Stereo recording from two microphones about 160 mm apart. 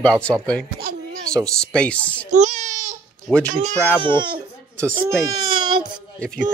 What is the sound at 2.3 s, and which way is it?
Baby cry, 50° right (ahead or behind).